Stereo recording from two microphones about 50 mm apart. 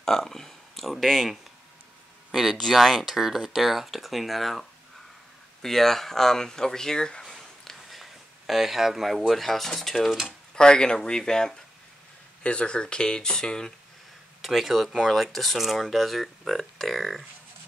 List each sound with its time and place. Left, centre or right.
0.0 s speech: centre
2.5 s speech: centre
7.2 s a sound: centre
9.3 s speech: centre
10.2 s speech: centre
14.4 s speech: centre